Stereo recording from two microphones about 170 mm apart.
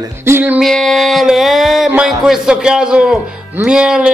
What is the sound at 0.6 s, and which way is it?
A man's voice, 5° left (ahead or behind).